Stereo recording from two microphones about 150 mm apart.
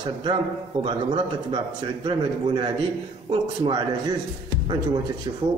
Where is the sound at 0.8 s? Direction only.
30° right (ahead or behind).